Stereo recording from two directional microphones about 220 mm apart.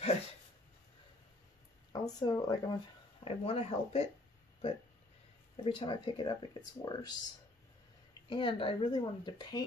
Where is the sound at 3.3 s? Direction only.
25° left (ahead or behind).